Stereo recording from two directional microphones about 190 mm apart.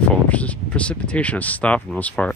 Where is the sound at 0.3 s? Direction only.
5° left (ahead or behind).